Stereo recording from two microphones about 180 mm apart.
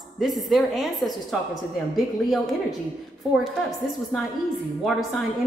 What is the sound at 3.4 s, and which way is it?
Speech, centre (ahead or behind).